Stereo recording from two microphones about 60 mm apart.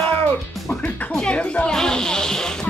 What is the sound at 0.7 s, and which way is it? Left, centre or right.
Speech, left.